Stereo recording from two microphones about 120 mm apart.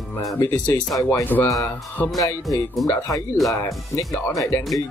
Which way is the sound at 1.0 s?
25° left (ahead or behind).